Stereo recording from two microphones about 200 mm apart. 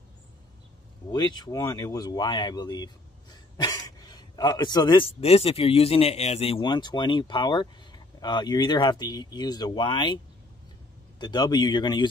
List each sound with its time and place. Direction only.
1.1 s speech: 20° left (ahead or behind)